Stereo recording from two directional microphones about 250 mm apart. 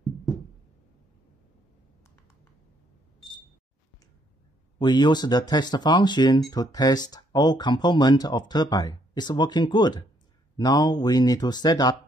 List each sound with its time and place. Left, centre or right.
4.7 s speech: centre